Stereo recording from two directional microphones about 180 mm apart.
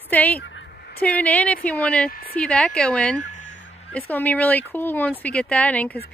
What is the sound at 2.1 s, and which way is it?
Speech, 55° left (ahead or behind).